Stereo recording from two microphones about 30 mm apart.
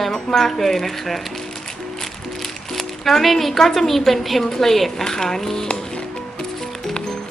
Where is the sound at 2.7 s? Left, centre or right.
Centre.